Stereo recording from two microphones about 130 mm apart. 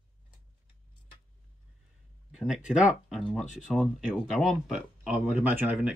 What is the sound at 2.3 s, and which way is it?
Speech, 5° right (ahead or behind).